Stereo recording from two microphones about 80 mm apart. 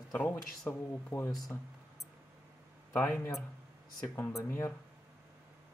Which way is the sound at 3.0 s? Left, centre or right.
Centre.